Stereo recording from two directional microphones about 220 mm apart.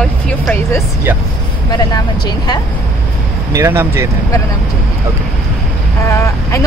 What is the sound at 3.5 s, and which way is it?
Speech, 10° right (ahead or behind).